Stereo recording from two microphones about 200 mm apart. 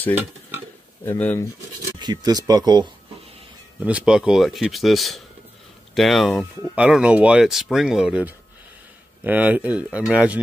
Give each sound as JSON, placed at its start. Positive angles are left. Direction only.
{"t": 1.0, "sound": "speech", "side_deg": 10}
{"t": 2.0, "sound": "speech", "side_deg": -20}
{"t": 3.8, "sound": "speech", "side_deg": -5}